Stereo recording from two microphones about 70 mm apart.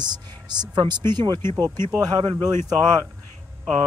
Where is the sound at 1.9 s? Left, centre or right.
Right.